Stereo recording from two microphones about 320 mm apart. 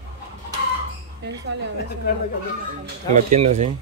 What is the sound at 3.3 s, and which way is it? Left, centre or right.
Speech, centre.